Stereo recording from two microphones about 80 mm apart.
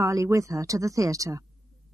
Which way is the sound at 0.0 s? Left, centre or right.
Right.